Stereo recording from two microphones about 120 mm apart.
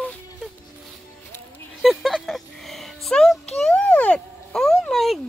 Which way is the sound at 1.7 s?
Centre (ahead or behind).